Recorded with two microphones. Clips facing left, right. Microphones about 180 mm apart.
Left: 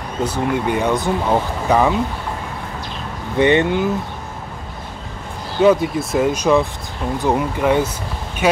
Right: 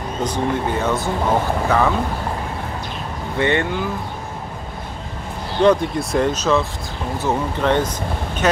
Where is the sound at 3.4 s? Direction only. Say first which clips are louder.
Left 5 dB; 20° left (ahead or behind).